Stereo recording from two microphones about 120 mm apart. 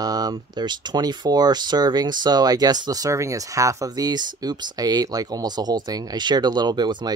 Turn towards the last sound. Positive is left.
turn(degrees=-35)  # may be behind; listen again after turning